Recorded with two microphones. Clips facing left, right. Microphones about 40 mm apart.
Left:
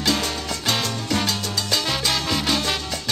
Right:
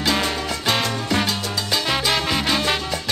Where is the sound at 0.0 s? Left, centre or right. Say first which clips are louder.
Right 2 dB; centre.